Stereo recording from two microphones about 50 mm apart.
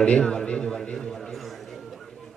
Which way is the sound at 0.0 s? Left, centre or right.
Centre.